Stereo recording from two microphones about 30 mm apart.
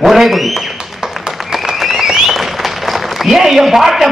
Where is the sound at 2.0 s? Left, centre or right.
Centre.